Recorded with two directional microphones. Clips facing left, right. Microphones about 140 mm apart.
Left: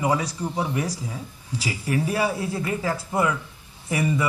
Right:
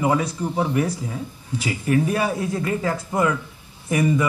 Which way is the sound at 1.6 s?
30° left (ahead or behind).